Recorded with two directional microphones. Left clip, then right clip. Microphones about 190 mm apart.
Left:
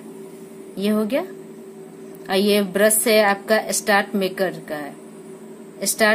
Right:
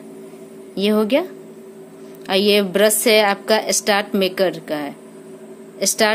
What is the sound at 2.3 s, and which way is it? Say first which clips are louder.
A woman's voice: right 3 dB; 40° right (ahead or behind).